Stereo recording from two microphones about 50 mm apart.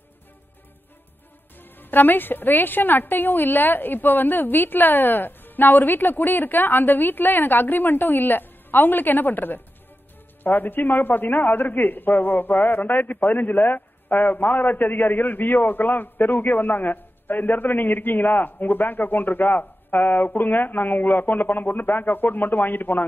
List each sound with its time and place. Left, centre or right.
1.6 s a man's voice: left